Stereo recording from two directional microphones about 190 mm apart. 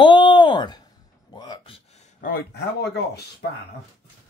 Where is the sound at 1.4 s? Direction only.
20° left (ahead or behind).